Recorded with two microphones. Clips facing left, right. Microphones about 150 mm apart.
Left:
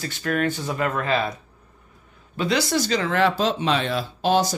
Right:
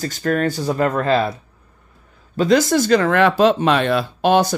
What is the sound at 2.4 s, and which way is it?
Speech, 45° right (ahead or behind).